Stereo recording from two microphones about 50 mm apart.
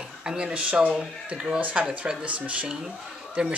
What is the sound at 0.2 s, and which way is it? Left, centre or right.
Speech, centre.